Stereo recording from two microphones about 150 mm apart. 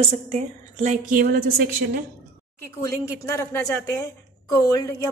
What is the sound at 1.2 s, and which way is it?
Speech, 90° right.